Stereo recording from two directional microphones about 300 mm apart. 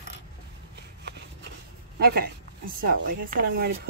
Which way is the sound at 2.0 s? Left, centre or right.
Right.